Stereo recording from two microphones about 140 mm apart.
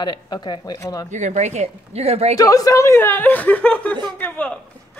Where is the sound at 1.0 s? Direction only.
60° right (ahead or behind).